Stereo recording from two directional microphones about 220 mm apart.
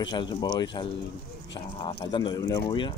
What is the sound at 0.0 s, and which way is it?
Speech, 20° left (ahead or behind).